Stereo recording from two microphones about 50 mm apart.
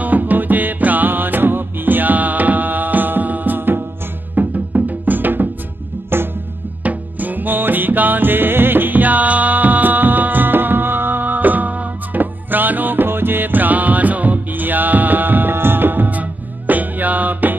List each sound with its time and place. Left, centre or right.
0.0 s music: right
6.8 s music: right